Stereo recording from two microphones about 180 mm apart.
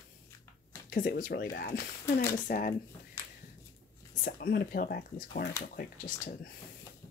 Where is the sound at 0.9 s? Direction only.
50° left (ahead or behind).